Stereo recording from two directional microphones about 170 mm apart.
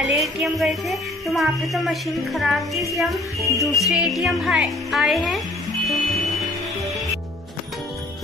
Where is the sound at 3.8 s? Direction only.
5° right (ahead or behind).